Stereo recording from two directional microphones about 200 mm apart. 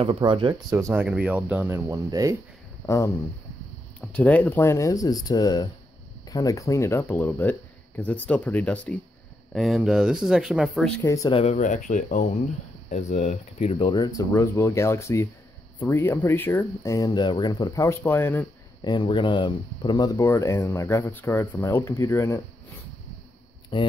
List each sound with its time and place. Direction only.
0.0 s speech: 25° right (ahead or behind)
1.0 s speech: 5° right (ahead or behind)
2.9 s speech: 15° left (ahead or behind)
11.1 s speech: 15° left (ahead or behind)
11.3 s speech: 35° left (ahead or behind); by 18.9 s 10° left (ahead or behind)
18.9 s speech: 25° left (ahead or behind)
23.7 s speech: 25° left (ahead or behind)